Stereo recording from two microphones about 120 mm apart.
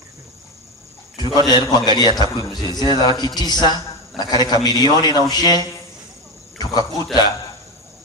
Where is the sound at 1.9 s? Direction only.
35° right (ahead or behind).